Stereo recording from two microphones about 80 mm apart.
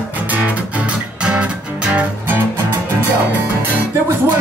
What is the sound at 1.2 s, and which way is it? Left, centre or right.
Music, centre.